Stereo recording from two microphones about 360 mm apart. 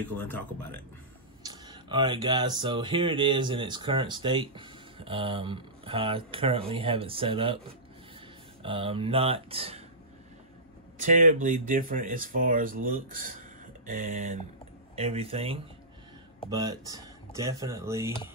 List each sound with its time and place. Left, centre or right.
0.0 s speech: centre
1.4 s speech: centre
8.6 s speech: centre
11.0 s speech: right